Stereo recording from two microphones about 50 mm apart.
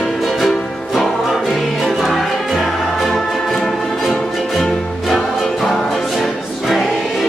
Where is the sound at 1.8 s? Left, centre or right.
Centre.